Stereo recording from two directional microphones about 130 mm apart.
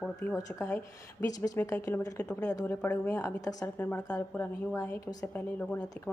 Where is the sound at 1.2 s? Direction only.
25° left (ahead or behind).